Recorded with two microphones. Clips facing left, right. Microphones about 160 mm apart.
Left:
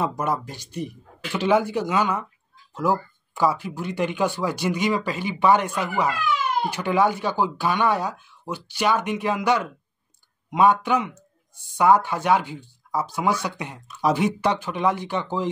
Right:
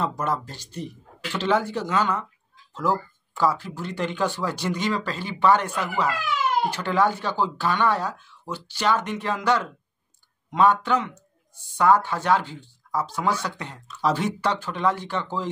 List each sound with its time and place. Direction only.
0.2 s speech: 10° left (ahead or behind)